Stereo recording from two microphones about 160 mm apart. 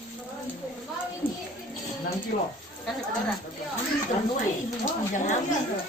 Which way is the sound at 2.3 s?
55° left (ahead or behind).